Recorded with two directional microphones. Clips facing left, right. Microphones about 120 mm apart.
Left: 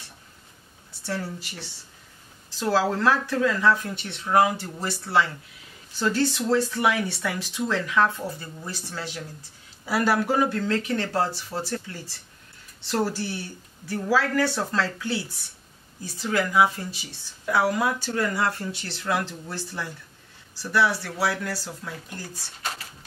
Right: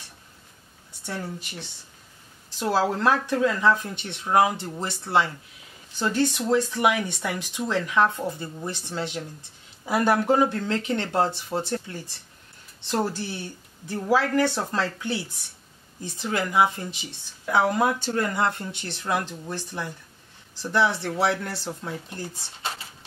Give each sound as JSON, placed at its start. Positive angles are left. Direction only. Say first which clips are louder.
{"t": 1.0, "sound": "a woman's voice", "louder": "left 2 dB", "side_deg": -20}